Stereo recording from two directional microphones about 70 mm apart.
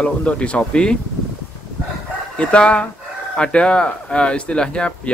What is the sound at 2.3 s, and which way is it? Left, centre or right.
Speech, centre.